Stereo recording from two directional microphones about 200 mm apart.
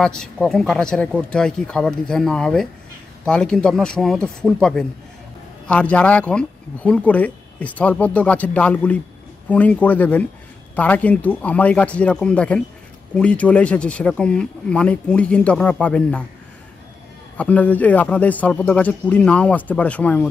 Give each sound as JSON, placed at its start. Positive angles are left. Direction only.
{"t": 0.0, "sound": "speech", "side_deg": 5}
{"t": 17.4, "sound": "speech", "side_deg": 5}